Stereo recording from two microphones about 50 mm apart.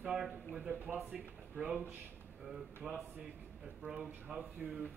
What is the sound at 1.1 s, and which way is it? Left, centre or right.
Speech, right.